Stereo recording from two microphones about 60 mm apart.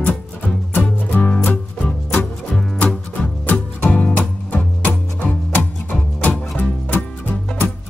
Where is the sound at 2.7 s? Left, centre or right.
Left.